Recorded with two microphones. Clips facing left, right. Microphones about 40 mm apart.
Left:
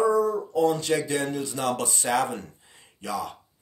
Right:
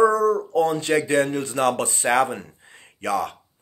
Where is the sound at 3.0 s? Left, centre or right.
Right.